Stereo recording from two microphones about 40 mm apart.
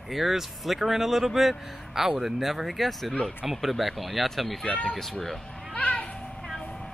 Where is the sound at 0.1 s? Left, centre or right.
Centre.